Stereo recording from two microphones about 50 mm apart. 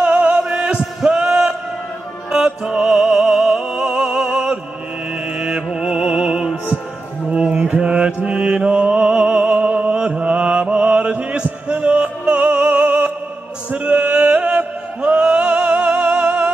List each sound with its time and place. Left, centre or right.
0.0 s music: right
7.3 s mantra: right
13.7 s music: right